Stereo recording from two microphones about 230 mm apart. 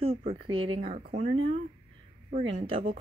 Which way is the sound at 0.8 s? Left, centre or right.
Right.